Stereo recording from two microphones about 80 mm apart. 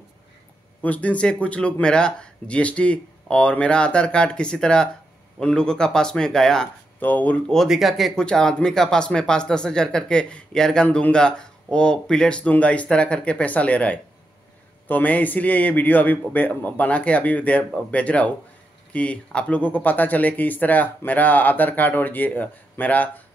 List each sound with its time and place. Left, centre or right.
0.8 s speech: centre
7.0 s speech: left
7.5 s speech: centre
8.3 s speech: centre